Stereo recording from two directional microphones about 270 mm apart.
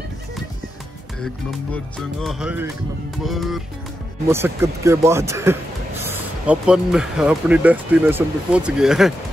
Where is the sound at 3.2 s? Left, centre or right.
Centre.